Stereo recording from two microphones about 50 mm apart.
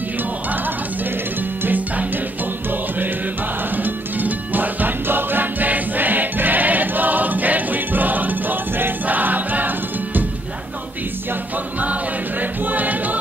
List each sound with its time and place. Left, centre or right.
3.7 s music: right
11.8 s choir: right